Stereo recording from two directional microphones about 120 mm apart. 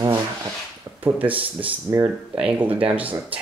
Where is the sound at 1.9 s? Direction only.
30° right (ahead or behind).